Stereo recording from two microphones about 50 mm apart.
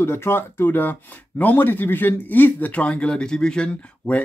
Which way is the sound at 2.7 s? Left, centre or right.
Left.